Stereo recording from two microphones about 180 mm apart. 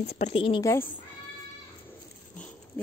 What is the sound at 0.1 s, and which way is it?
Speech, 35° left (ahead or behind).